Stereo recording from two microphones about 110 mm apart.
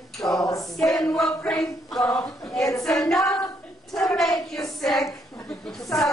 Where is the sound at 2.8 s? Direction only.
5° left (ahead or behind).